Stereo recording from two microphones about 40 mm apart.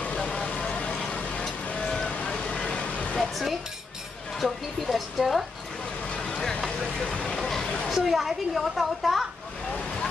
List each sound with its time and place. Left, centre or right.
0.1 s vehicle: left
2.0 s vehicle: left
2.9 s a sound: left
3.2 s chink: centre
4.4 s a woman's voice: centre
6.1 s vehicle: left
7.9 s a woman's voice: centre